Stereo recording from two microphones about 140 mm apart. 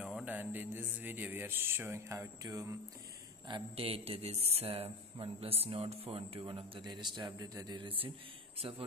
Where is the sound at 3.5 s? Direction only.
40° right (ahead or behind); by 7.8 s 25° right (ahead or behind).